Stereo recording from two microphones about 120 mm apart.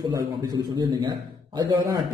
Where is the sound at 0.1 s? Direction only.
35° right (ahead or behind).